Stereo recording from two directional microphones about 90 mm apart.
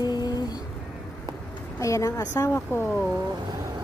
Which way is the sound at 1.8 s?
35° left (ahead or behind).